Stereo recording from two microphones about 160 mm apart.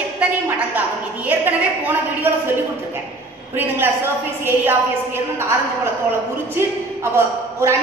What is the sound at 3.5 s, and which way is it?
A woman's voice, 10° right (ahead or behind).